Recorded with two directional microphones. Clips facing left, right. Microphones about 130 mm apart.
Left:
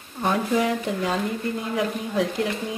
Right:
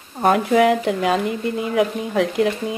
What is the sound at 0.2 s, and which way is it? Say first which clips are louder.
Speech: right 7 dB; 65° right (ahead or behind).